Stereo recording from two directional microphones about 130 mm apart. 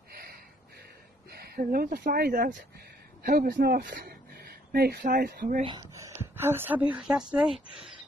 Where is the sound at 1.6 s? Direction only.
90° right.